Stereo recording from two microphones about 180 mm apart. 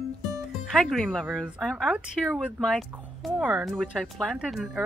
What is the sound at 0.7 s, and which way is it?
Speech, centre (ahead or behind).